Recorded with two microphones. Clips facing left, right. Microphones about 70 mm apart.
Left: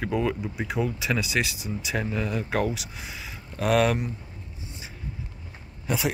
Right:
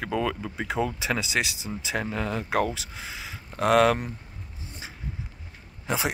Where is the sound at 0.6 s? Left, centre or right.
Right.